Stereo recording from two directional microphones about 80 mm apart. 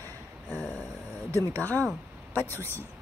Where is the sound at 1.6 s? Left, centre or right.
Centre.